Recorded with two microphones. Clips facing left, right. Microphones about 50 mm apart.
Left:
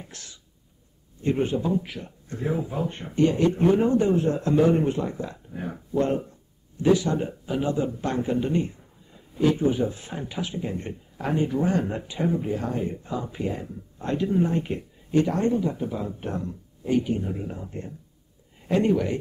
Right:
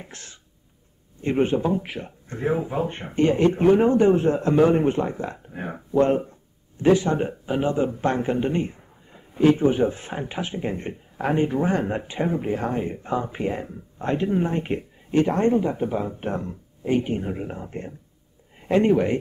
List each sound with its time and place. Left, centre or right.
0.0 s throat clearing: right
1.2 s speech: right